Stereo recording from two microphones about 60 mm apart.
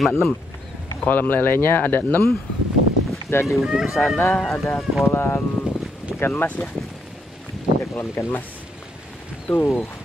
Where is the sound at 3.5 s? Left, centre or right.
Centre.